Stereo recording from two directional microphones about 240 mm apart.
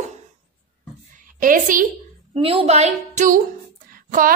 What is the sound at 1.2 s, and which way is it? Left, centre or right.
Speech, right.